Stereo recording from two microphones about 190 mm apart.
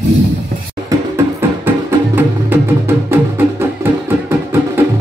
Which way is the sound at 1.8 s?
10° right (ahead or behind).